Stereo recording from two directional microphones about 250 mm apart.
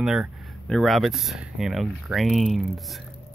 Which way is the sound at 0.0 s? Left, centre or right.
Centre.